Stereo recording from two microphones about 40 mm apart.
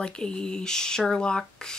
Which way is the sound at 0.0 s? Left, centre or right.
Left.